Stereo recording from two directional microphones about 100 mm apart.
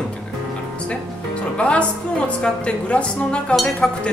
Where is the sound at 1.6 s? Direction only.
10° left (ahead or behind).